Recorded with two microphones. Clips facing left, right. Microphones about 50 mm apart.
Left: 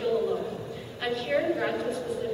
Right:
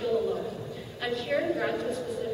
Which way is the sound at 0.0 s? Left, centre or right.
Centre.